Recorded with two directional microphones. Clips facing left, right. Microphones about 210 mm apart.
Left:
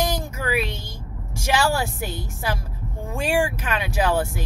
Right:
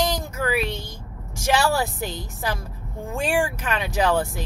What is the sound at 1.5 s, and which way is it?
Speech, 10° left (ahead or behind).